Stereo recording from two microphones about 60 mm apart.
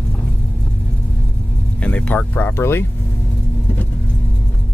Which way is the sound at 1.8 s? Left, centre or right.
Left.